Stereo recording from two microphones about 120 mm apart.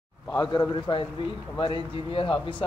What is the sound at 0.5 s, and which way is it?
A man's voice, 40° left (ahead or behind).